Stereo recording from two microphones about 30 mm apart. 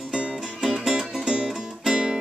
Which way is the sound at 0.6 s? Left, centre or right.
Centre.